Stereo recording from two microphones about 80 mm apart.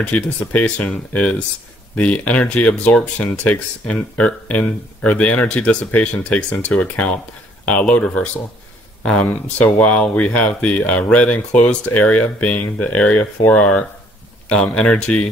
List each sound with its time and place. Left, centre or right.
0.5 s speech: centre